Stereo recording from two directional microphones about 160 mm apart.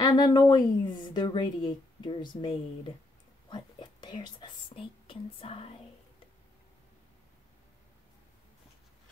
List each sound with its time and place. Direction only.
0.0 s a woman's voice: 25° left (ahead or behind)